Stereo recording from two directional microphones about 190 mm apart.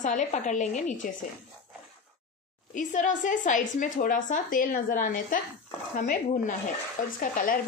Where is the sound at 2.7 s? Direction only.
40° left (ahead or behind).